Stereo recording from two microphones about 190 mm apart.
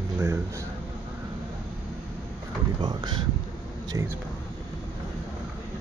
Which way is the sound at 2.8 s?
25° right (ahead or behind).